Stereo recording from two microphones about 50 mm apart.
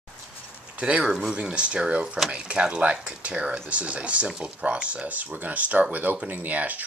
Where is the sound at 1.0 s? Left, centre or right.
Centre.